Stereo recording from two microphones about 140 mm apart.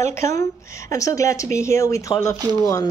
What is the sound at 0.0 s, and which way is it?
Speech, 20° left (ahead or behind).